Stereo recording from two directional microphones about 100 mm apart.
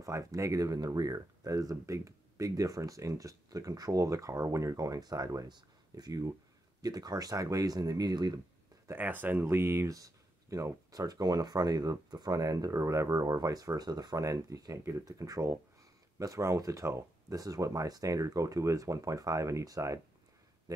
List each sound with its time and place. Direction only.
0.0 s speech: 35° right (ahead or behind)
8.8 s speech: 20° right (ahead or behind); by 20.0 s 35° right (ahead or behind)